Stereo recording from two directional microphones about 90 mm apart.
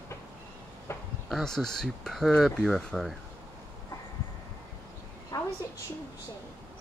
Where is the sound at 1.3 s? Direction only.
5° left (ahead or behind).